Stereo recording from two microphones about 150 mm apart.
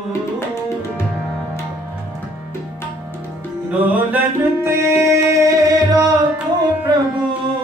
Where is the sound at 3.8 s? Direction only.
15° right (ahead or behind).